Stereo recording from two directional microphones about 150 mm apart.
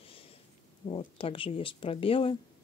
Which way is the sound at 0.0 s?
40° left (ahead or behind).